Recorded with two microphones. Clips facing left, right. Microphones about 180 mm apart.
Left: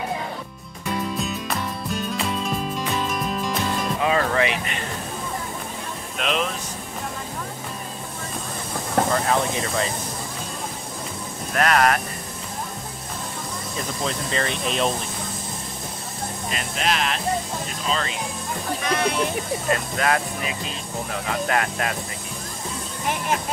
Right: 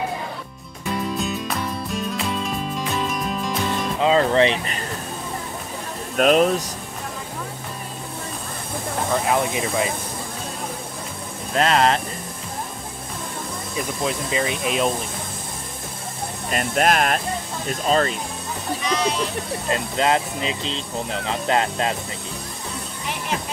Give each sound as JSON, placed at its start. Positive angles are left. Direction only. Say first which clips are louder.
{"t": 1.1, "sound": "music", "louder": "right 2 dB", "side_deg": 0}
{"t": 4.0, "sound": "speech", "louder": "right 5 dB", "side_deg": -25}
{"t": 6.1, "sound": "speech", "louder": "right 9 dB", "side_deg": -45}
{"t": 9.1, "sound": "speech", "louder": "right 1 dB", "side_deg": -10}
{"t": 11.5, "sound": "speech", "louder": "right 1 dB", "side_deg": -25}
{"t": 14.0, "sound": "speech", "louder": "right 2 dB", "side_deg": -5}
{"t": 16.4, "sound": "speech", "louder": "right 7 dB", "side_deg": -50}
{"t": 18.8, "sound": "a sound", "louder": "right 1 dB", "side_deg": 55}
{"t": 19.7, "sound": "speech", "louder": "right 2 dB", "side_deg": -25}